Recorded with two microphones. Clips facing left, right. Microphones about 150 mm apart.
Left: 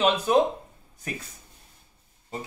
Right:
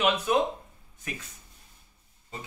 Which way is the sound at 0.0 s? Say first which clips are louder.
Left 3 dB; 35° left (ahead or behind).